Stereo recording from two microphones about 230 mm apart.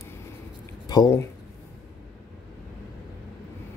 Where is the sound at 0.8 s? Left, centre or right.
Centre.